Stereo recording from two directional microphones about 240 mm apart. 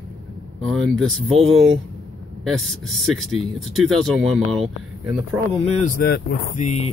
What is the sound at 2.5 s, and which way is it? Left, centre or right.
Speech, centre.